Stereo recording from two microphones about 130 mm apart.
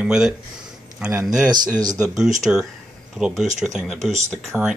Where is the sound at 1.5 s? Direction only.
30° right (ahead or behind).